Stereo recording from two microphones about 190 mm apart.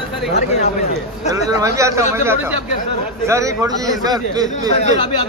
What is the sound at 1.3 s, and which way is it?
Speech, 15° right (ahead or behind).